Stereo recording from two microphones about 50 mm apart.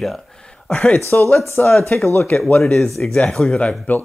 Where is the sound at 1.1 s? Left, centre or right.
Left.